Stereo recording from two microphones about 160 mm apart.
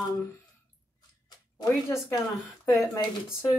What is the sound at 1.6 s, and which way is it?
Speech, 20° left (ahead or behind).